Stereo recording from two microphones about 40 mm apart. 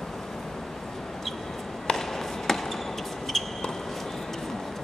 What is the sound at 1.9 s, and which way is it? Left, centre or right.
Chop, centre.